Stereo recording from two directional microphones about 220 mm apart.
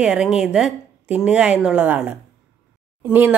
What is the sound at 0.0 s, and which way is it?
A woman's voice, 5° right (ahead or behind).